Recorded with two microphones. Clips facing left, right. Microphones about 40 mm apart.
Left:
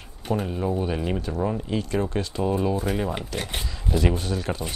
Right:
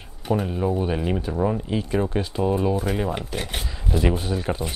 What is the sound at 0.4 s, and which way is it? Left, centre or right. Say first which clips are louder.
Speech: right 1 dB; centre.